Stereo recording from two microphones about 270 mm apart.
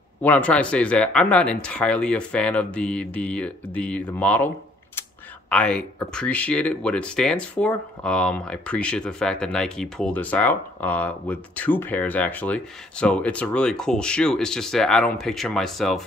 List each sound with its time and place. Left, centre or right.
0.2 s speech: centre
5.5 s speech: centre